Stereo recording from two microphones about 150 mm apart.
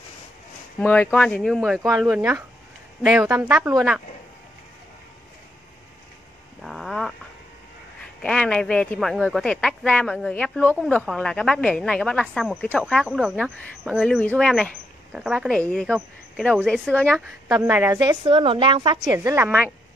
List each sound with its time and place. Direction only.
0.7 s speech: 10° left (ahead or behind)
6.6 s frog: centre (ahead or behind)
8.0 s a man's voice: 5° left (ahead or behind)
17.5 s speech: 15° right (ahead or behind)
17.9 s a woman's voice: 30° right (ahead or behind)
19.1 s speech: 20° right (ahead or behind)